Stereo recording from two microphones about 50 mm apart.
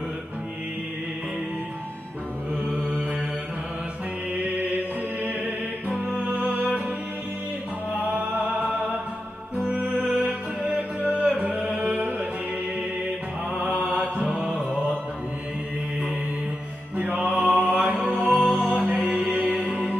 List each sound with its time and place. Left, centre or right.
5.2 s music: right
8.4 s music: centre
11.0 s music: left
11.2 s music: right
13.6 s mantra: right
14.2 s mantra: centre
16.9 s music: right